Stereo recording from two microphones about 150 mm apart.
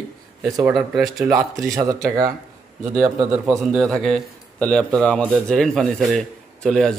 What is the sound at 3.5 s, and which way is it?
A man's voice, centre (ahead or behind).